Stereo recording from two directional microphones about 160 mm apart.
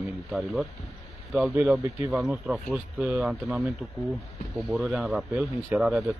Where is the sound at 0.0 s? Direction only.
5° right (ahead or behind).